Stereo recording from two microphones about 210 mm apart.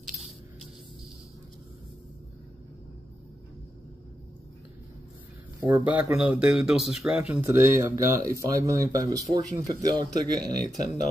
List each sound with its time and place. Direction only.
5.6 s speech: 10° right (ahead or behind)
10.4 s speech: 5° left (ahead or behind)